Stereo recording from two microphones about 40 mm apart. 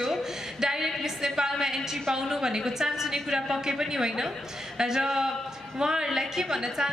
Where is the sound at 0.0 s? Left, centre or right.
Centre.